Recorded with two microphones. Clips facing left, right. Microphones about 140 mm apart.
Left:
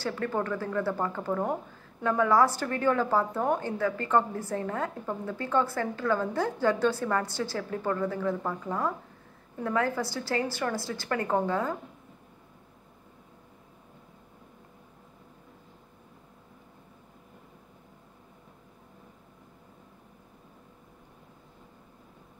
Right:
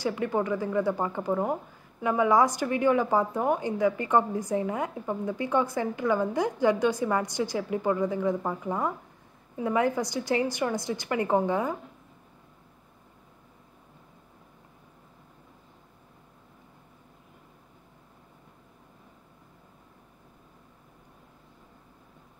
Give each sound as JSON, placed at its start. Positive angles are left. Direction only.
{"t": 0.0, "sound": "a woman's voice", "side_deg": -15}
{"t": 2.0, "sound": "a woman's voice", "side_deg": -15}